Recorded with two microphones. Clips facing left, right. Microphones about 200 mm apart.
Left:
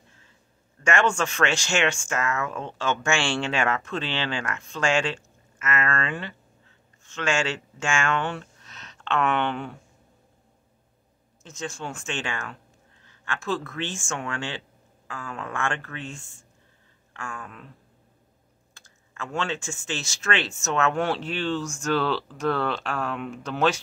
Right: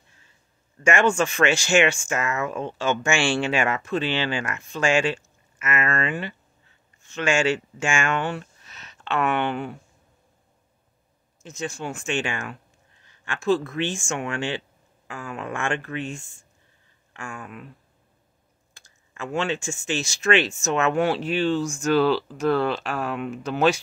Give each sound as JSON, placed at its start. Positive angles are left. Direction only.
{"t": 0.8, "sound": "speech", "side_deg": -10}
{"t": 11.4, "sound": "speech", "side_deg": -10}
{"t": 18.8, "sound": "speech", "side_deg": -15}